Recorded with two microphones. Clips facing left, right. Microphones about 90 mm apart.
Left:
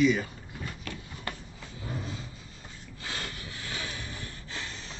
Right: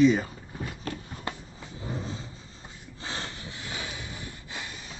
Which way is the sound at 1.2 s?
20° right (ahead or behind).